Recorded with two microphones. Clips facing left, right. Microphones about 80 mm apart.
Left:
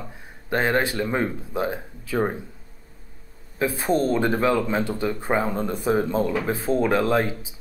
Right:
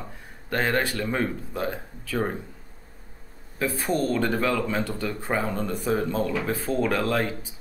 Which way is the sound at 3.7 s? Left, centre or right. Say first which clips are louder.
Left 3 dB; left.